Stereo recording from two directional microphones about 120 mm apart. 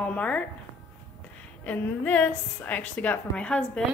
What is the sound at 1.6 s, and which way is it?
A woman's voice, 10° left (ahead or behind).